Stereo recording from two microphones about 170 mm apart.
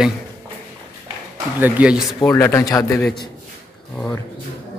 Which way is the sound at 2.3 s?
15° left (ahead or behind).